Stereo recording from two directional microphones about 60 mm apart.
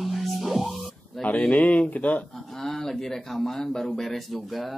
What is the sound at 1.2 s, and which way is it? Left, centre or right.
Speech, left.